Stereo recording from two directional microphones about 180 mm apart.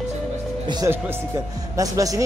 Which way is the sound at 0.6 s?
20° right (ahead or behind).